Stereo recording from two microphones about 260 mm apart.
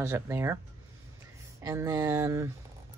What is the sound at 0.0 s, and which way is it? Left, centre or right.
Speech, centre.